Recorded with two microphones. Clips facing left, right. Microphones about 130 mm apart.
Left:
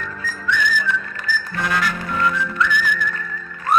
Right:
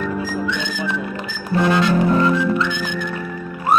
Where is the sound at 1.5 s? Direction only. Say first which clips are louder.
Right 9 dB; 25° right (ahead or behind).